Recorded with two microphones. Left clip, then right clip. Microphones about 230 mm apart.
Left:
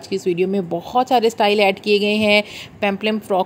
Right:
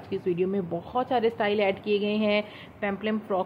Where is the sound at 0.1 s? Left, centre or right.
Left.